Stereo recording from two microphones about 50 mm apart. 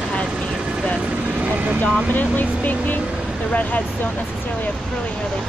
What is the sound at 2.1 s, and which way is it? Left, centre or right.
Speech, left.